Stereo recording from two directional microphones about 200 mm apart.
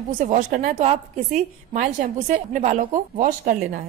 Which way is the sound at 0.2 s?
40° right (ahead or behind).